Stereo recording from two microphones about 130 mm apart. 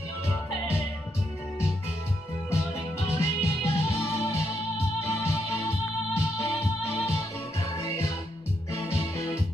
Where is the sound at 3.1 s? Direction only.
20° left (ahead or behind).